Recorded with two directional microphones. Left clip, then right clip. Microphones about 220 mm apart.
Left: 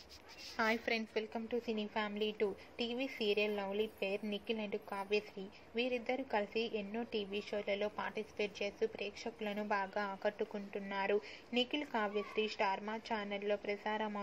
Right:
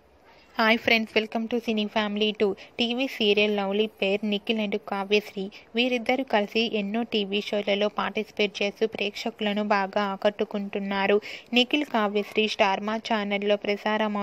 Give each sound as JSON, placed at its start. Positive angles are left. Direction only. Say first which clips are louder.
{"t": 0.6, "sound": "a woman's voice", "louder": "right 14 dB", "side_deg": -40}